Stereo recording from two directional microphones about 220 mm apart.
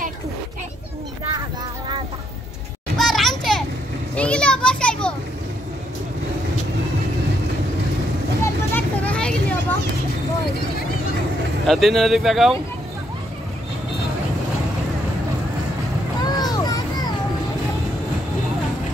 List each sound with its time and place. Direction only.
3.0 s children playing: centre (ahead or behind)
8.7 s vehicle: 5° left (ahead or behind)
11.6 s speech: centre (ahead or behind)
16.2 s a sound: 20° left (ahead or behind)